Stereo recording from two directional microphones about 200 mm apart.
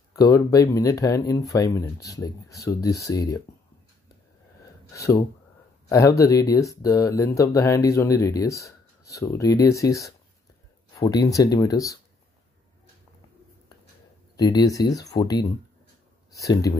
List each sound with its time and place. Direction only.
0.1 s speech: 15° left (ahead or behind)
4.9 s speech: 15° left (ahead or behind)
14.3 s speech: 20° left (ahead or behind)